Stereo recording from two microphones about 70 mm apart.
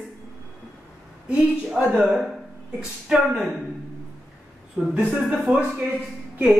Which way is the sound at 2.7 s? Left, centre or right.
Centre.